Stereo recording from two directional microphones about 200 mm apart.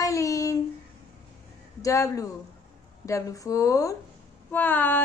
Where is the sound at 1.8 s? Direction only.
15° left (ahead or behind).